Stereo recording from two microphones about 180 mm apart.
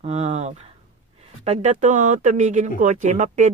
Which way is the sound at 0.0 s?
35° right (ahead or behind).